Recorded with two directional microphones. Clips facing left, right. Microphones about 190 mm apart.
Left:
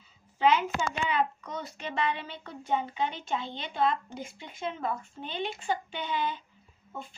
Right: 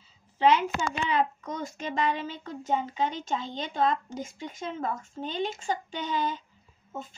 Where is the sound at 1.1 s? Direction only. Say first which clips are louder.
Right 2 dB; 45° right (ahead or behind).